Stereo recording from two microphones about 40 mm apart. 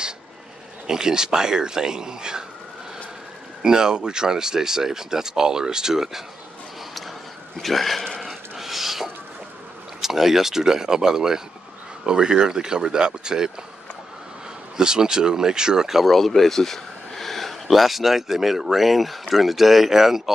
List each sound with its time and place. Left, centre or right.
0.8 s speech: centre
3.6 s speech: centre
7.5 s speech: centre
8.2 s a sound: centre
10.0 s speech: centre
14.8 s speech: centre
16.1 s speech: centre